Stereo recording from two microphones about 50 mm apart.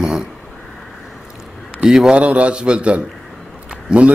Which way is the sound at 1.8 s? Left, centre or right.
Centre.